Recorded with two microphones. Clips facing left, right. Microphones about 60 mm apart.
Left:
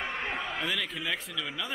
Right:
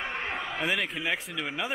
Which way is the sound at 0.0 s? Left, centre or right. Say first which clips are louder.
Right 1 dB; centre.